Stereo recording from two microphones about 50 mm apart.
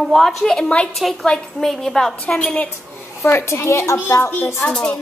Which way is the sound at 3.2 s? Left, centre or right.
Left.